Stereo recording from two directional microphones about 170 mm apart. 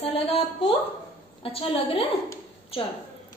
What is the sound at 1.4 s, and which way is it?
Speech, 35° left (ahead or behind).